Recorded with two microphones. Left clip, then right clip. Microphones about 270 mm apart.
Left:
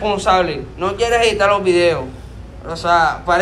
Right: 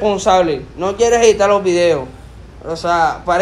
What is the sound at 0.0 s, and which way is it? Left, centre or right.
A man's voice, right.